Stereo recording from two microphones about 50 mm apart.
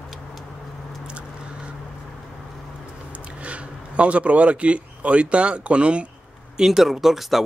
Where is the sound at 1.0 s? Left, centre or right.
Right.